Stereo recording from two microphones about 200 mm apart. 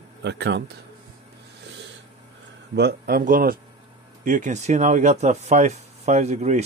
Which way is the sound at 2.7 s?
50° right (ahead or behind).